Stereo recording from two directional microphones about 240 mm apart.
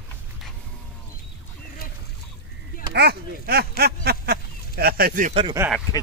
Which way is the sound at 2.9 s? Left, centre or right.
Right.